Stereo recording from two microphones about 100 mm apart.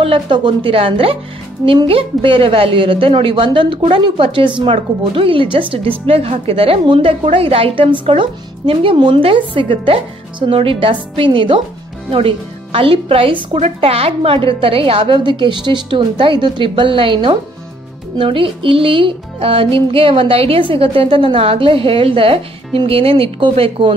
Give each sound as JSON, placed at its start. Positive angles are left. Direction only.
{"t": 0.0, "sound": "speech", "side_deg": -60}